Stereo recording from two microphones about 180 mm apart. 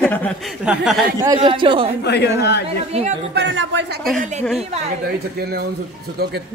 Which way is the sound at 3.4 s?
85° right.